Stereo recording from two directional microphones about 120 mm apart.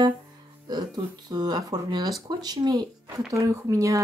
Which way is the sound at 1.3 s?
35° right (ahead or behind).